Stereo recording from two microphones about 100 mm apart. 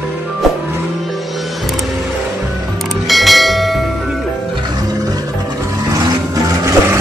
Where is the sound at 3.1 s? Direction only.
Centre (ahead or behind).